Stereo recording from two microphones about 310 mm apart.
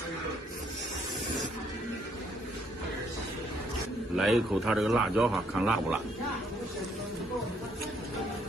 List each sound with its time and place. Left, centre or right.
4.2 s a man's voice: centre